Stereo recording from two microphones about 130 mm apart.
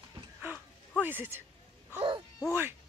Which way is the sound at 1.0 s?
15° right (ahead or behind).